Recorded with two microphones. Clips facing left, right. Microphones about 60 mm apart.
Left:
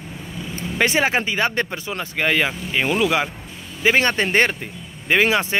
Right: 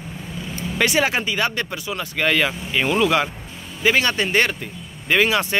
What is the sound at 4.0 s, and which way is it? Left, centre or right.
Speech, left.